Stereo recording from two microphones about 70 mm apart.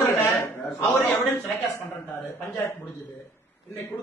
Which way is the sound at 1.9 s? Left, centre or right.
Left.